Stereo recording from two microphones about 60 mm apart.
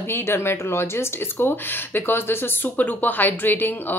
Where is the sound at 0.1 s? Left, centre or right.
Left.